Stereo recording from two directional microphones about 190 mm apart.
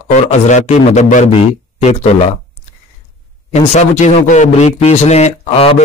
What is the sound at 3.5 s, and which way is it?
A man's voice, 35° left (ahead or behind).